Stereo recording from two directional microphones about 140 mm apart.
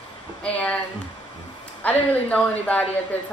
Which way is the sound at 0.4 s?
10° left (ahead or behind).